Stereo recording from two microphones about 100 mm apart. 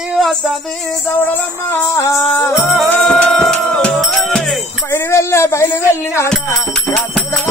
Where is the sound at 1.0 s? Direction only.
20° left (ahead or behind).